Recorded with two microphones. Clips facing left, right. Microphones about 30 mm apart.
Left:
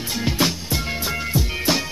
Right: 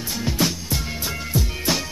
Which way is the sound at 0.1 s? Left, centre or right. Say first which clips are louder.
Left 2 dB; left.